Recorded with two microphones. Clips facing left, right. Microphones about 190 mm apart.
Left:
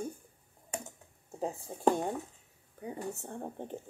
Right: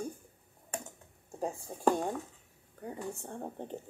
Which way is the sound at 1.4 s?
Centre (ahead or behind).